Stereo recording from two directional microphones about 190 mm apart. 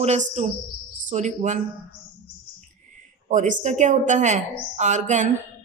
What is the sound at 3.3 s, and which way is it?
Speech, 40° right (ahead or behind).